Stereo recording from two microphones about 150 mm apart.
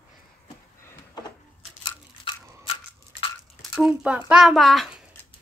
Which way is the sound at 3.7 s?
5° right (ahead or behind).